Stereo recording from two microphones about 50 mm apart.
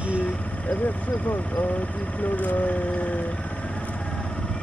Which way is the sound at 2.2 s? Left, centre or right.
Left.